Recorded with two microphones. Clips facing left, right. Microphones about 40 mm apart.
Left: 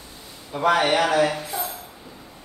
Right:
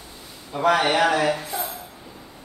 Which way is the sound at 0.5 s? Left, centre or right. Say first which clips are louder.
Even; centre.